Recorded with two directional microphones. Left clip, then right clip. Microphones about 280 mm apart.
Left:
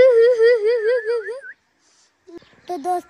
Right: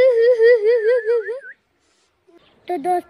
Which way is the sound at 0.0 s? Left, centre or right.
Left.